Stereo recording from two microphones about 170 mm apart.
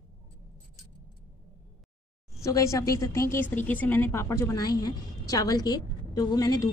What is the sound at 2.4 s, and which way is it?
A woman's voice, 20° left (ahead or behind).